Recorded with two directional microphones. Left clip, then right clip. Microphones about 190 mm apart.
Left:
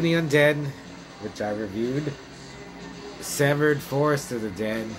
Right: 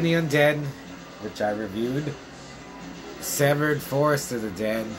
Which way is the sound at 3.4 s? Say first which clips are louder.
Left 1 dB; 5° right (ahead or behind).